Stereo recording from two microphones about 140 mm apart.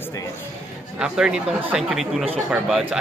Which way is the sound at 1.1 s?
5° right (ahead or behind).